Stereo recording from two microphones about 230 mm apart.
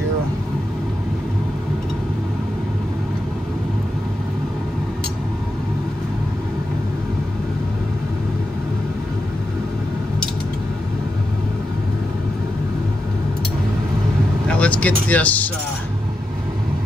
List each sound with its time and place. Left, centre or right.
14.5 s vehicle: centre